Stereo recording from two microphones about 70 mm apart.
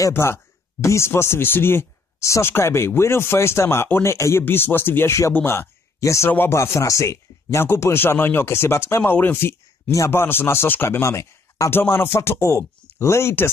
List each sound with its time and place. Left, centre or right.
0.1 s a man's voice: left
7.6 s speech: left
11.7 s speech: left